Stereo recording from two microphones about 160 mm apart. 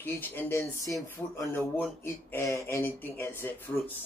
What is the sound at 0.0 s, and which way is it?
Speech, 10° left (ahead or behind).